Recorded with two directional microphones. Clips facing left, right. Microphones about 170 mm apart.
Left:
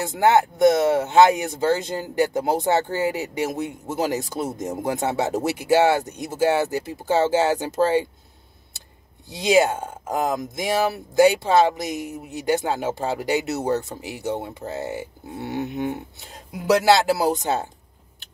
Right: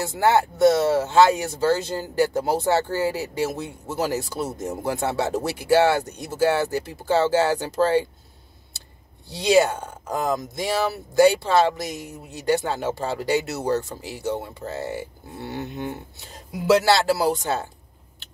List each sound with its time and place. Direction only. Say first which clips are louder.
0.2 s speech: left 1 dB; 20° left (ahead or behind)
9.3 s speech: even; 15° left (ahead or behind)